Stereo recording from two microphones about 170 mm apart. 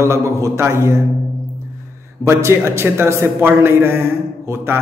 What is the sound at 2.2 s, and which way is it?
A man's voice, 15° right (ahead or behind).